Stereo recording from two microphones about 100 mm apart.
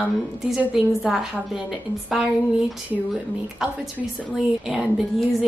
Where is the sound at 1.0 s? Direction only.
5° right (ahead or behind).